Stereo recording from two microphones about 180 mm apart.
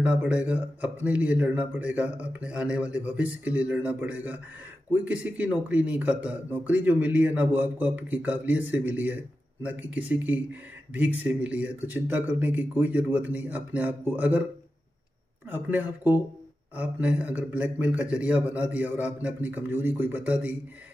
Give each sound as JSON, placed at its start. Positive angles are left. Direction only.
{"t": 0.0, "sound": "speech", "side_deg": -5}
{"t": 15.5, "sound": "speech", "side_deg": -10}